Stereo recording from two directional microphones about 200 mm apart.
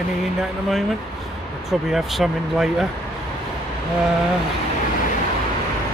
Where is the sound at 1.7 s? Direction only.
Centre (ahead or behind).